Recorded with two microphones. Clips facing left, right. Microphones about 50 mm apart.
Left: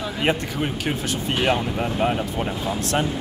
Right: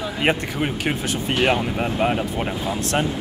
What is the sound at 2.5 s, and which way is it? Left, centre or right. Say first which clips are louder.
Speech: right 1 dB; centre.